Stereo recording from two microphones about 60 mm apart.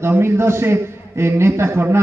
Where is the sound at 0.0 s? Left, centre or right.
Right.